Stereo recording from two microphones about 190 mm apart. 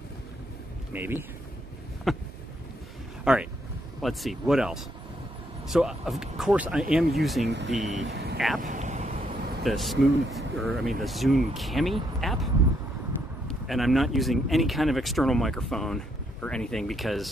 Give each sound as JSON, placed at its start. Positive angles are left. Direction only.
{"t": 0.9, "sound": "speech", "side_deg": -10}
{"t": 2.1, "sound": "speech", "side_deg": 0}
{"t": 3.3, "sound": "speech", "side_deg": -5}
{"t": 7.4, "sound": "speech", "side_deg": -65}
{"t": 8.6, "sound": "vehicle", "side_deg": -40}
{"t": 9.6, "sound": "speech", "side_deg": 0}
{"t": 13.5, "sound": "speech", "side_deg": 0}